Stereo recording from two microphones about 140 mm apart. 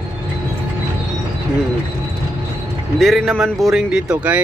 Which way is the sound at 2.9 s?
Centre (ahead or behind).